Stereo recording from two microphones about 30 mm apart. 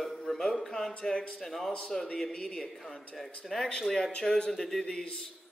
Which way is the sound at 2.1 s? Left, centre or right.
Left.